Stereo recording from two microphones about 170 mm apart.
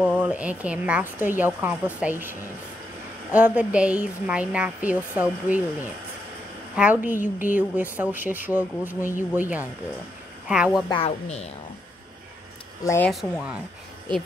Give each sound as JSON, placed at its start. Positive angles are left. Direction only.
{"t": 0.2, "sound": "speech", "side_deg": -10}
{"t": 3.3, "sound": "speech", "side_deg": -10}
{"t": 10.9, "sound": "a woman's voice", "side_deg": 35}
{"t": 12.8, "sound": "speech", "side_deg": 15}
{"t": 13.1, "sound": "speech", "side_deg": -5}